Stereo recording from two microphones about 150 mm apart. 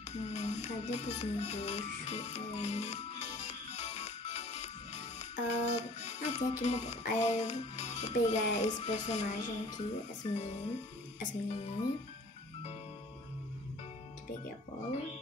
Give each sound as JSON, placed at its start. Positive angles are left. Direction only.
{"t": 0.1, "sound": "speech", "side_deg": 50}